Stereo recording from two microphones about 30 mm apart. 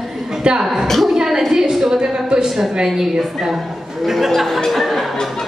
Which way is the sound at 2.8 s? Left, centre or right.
Centre.